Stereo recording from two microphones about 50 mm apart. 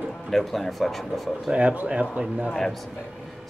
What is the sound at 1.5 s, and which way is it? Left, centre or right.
Speech, right.